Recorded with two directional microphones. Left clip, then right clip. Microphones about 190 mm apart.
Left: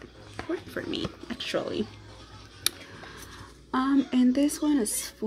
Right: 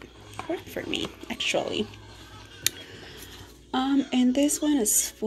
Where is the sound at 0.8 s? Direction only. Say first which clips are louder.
Right 2 dB; 25° left (ahead or behind).